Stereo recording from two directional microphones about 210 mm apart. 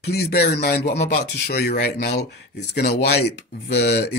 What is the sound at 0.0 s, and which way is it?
Speech, 50° left (ahead or behind).